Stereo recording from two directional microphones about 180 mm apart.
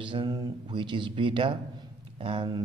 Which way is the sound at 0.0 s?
25° right (ahead or behind).